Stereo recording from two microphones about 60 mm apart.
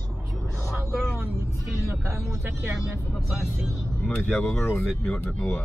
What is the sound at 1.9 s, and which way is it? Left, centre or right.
Speech, right.